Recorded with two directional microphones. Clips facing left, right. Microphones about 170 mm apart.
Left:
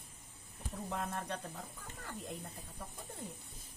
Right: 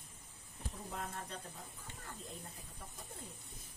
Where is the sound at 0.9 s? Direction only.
65° left (ahead or behind).